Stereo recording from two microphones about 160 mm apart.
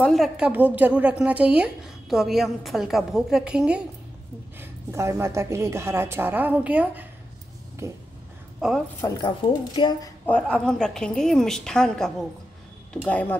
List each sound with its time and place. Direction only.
0.0 s a woman's voice: centre (ahead or behind)
0.5 s a woman's voice: 10° right (ahead or behind)
4.6 s a woman's voice: 15° right (ahead or behind)
9.0 s a woman's voice: 25° left (ahead or behind)
10.2 s a woman's voice: 10° left (ahead or behind)